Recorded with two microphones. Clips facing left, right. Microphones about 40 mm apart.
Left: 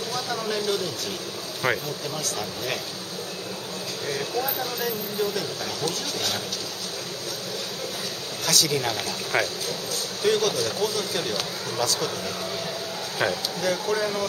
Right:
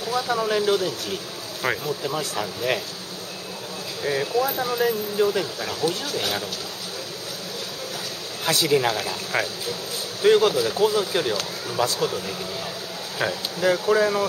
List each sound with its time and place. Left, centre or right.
0.1 s speech: centre
2.0 s speech: centre
4.0 s speech: centre
8.5 s speech: right
10.2 s speech: right
13.2 s speech: centre
13.6 s speech: centre